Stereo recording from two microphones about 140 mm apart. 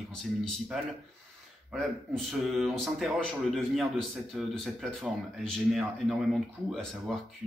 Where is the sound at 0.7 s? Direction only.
Centre (ahead or behind).